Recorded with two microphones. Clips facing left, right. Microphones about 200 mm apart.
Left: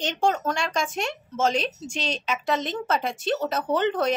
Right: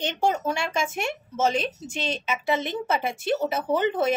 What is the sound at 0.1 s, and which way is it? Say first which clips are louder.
Speech: left 2 dB; 10° right (ahead or behind).